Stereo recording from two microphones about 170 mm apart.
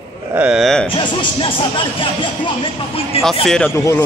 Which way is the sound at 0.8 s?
30° left (ahead or behind).